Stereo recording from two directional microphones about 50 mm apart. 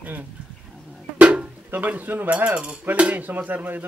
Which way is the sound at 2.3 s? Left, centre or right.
Right.